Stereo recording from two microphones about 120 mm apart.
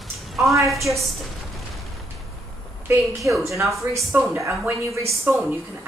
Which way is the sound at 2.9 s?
25° right (ahead or behind).